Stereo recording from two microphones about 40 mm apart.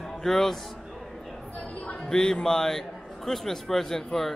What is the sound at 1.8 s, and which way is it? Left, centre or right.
Music, left.